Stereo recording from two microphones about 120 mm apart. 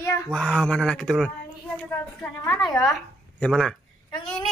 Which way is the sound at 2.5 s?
Centre (ahead or behind).